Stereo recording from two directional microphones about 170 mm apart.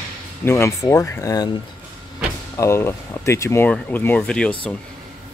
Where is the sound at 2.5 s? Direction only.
15° left (ahead or behind).